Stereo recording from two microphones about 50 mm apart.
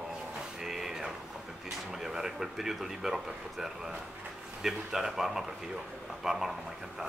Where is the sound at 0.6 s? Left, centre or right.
Centre.